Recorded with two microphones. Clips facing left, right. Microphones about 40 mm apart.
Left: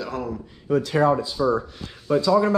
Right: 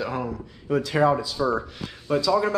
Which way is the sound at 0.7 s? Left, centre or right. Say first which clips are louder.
Left 1 dB; right.